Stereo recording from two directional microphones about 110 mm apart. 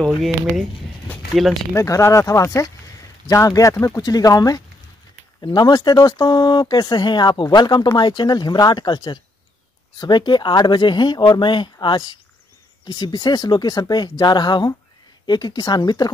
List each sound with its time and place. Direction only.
1.3 s speech: centre (ahead or behind)
1.7 s speech: 25° left (ahead or behind)